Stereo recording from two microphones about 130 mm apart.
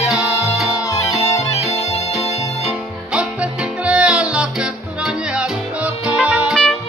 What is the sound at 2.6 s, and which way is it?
Music, 5° right (ahead or behind).